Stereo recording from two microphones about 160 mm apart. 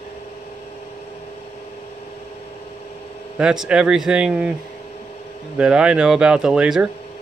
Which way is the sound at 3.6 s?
5° right (ahead or behind).